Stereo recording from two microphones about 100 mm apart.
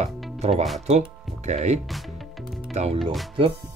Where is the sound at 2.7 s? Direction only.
90° right.